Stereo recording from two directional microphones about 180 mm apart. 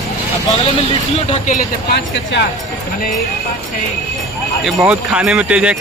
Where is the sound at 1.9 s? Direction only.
70° left (ahead or behind).